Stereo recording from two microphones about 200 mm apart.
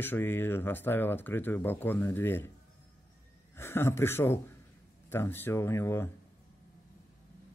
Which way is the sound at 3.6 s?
10° left (ahead or behind).